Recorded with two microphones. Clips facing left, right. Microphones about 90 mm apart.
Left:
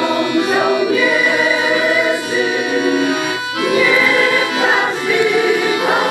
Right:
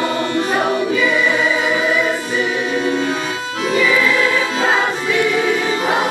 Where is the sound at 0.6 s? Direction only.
75° left (ahead or behind).